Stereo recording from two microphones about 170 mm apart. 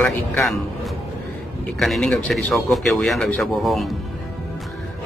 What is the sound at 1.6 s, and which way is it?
A man's voice, centre (ahead or behind).